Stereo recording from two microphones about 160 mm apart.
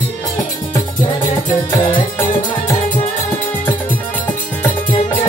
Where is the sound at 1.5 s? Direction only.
30° left (ahead or behind).